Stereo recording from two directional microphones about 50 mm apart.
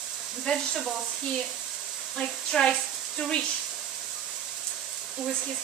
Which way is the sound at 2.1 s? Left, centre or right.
Centre.